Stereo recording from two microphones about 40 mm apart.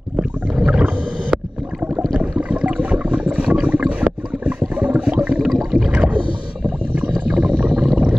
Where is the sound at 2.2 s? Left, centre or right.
Right.